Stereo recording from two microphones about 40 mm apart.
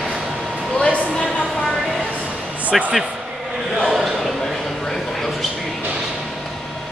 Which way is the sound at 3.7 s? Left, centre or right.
Centre.